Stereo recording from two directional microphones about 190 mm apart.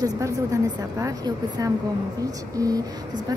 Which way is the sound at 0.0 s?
15° right (ahead or behind).